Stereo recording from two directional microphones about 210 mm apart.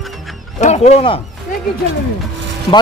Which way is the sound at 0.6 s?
35° left (ahead or behind).